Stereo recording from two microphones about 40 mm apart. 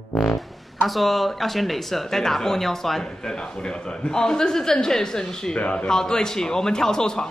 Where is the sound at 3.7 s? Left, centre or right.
Centre.